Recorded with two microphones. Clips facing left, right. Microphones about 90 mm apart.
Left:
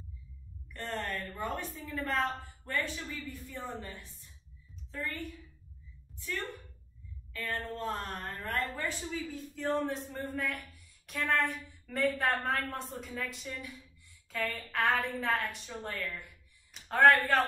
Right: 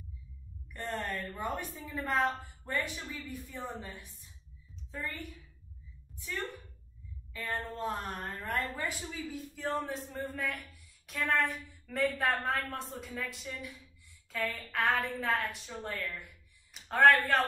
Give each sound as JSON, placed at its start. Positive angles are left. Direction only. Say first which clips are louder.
{"t": 1.1, "sound": "a woman's voice", "louder": "even", "side_deg": -20}
{"t": 7.3, "sound": "a woman's voice", "louder": "even", "side_deg": -20}